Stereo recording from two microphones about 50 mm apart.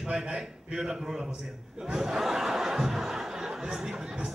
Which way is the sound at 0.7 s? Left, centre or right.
Centre.